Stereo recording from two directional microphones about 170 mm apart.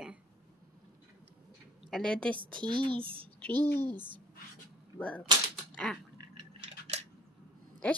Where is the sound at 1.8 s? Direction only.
5° left (ahead or behind).